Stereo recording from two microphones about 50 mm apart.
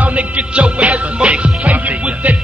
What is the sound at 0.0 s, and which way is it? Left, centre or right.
Music, right.